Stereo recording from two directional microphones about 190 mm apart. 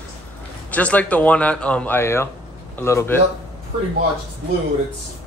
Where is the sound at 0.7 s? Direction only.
10° left (ahead or behind).